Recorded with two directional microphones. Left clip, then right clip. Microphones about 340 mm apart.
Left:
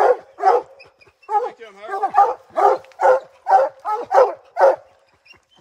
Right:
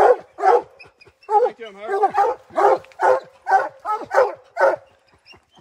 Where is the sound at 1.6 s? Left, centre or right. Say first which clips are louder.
Right 4 dB; centre.